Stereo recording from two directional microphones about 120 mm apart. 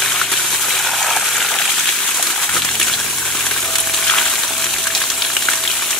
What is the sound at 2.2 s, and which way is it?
Water, 5° left (ahead or behind).